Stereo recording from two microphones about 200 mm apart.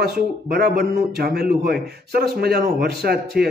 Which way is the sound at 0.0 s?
50° right (ahead or behind).